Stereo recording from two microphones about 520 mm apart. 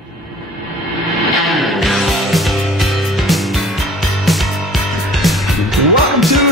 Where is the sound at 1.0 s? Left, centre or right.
Centre.